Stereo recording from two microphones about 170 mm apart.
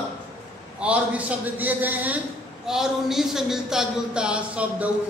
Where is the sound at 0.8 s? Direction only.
5° right (ahead or behind).